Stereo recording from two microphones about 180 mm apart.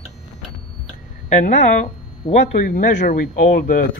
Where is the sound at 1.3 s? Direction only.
40° left (ahead or behind).